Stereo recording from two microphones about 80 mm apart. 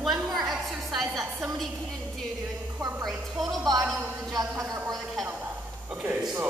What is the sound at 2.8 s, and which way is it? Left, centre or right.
Music, right.